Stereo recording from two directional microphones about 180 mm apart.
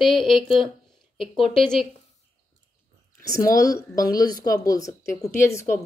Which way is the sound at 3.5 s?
20° left (ahead or behind).